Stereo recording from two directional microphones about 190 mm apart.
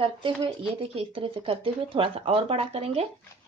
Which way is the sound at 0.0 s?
30° right (ahead or behind).